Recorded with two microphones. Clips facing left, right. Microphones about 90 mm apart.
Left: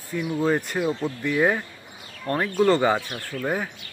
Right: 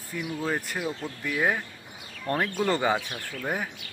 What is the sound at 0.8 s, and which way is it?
Speech, 30° left (ahead or behind).